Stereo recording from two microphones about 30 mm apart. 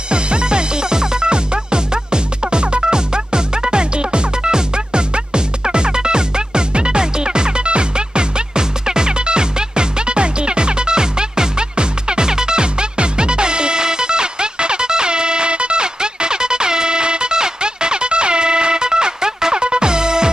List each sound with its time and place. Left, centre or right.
0.1 s music: right